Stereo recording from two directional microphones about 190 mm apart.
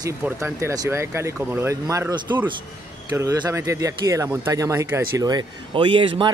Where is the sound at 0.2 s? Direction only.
15° right (ahead or behind).